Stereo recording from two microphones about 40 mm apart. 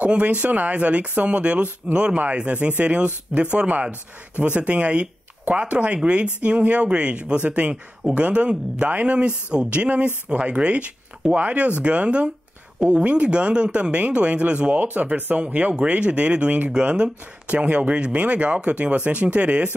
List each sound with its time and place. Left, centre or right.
0.0 s speech: right
14.8 s speech: right